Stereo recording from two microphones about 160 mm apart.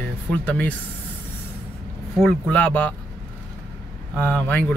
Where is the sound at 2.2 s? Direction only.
10° left (ahead or behind).